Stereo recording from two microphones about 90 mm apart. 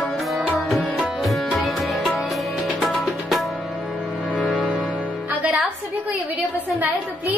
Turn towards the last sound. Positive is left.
turn(degrees=-15)  # may be behind; listen again after turning